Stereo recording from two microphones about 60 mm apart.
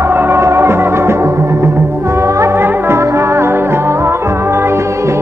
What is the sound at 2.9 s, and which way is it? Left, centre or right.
Music, right.